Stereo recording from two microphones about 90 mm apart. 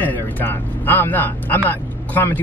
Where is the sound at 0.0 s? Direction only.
20° left (ahead or behind).